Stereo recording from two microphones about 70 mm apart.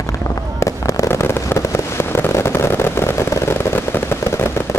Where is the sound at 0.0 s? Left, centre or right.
Left.